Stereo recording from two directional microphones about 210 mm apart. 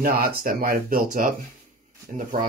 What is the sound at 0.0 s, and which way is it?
Speech, 45° right (ahead or behind).